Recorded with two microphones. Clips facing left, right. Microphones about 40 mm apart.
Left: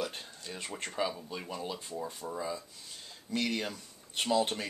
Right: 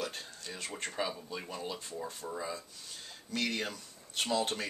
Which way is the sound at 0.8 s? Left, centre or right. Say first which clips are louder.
Left 3 dB; centre.